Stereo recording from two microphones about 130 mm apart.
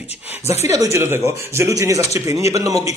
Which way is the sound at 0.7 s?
25° right (ahead or behind).